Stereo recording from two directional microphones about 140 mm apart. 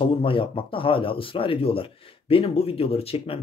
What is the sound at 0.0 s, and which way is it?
Speech, 40° left (ahead or behind).